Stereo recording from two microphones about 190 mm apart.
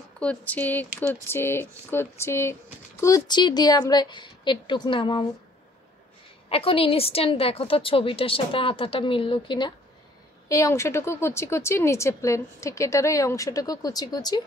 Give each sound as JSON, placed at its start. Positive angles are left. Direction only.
{"t": 0.2, "sound": "a woman's voice", "side_deg": 5}
{"t": 6.5, "sound": "a woman's voice", "side_deg": 30}